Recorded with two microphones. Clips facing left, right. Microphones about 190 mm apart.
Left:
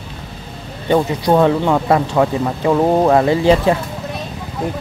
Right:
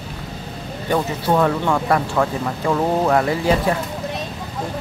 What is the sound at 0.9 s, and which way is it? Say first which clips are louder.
Speech: left 5 dB; 25° left (ahead or behind).